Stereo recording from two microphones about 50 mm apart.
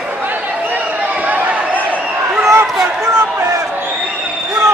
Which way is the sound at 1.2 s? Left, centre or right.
Right.